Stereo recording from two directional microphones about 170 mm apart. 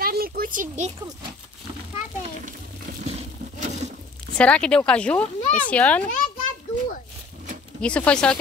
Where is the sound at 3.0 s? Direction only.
40° right (ahead or behind).